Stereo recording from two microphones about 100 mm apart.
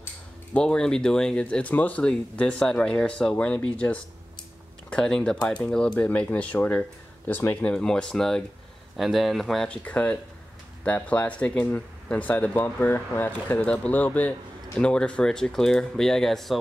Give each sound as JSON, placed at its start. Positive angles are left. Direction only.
{"t": 0.0, "sound": "speech", "side_deg": 15}
{"t": 7.7, "sound": "speech", "side_deg": 5}
{"t": 9.8, "sound": "speech", "side_deg": 15}